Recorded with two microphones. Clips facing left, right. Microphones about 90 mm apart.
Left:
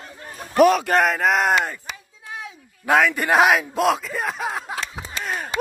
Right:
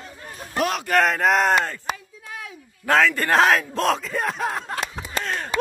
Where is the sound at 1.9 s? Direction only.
45° right (ahead or behind).